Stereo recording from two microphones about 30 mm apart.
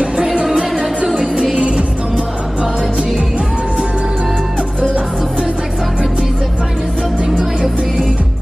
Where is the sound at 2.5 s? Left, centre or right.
Right.